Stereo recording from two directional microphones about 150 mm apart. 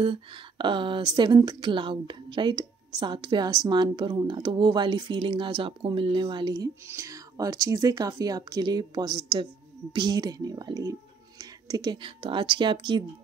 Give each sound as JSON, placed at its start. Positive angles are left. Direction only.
{"t": 0.0, "sound": "a woman's voice", "side_deg": -35}